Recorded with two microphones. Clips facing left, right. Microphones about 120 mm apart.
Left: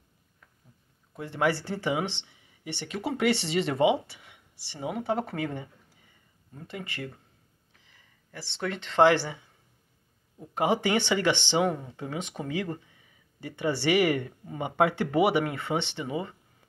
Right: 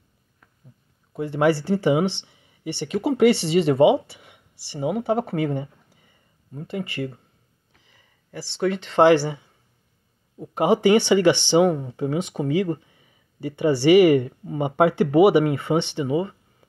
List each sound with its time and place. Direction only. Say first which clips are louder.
1.1 s speech: right 7 dB; 15° right (ahead or behind)
6.5 s speech: right 9 dB; 20° right (ahead or behind)
8.4 s speech: right 9 dB; 15° right (ahead or behind)
10.5 s speech: right 8 dB; 15° right (ahead or behind)
12.4 s speech: right 10 dB; 20° right (ahead or behind)